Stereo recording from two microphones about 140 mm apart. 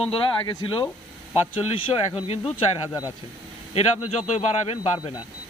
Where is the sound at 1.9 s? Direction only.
45° left (ahead or behind).